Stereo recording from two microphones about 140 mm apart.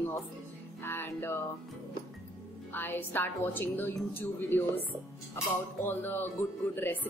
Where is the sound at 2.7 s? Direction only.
15° left (ahead or behind).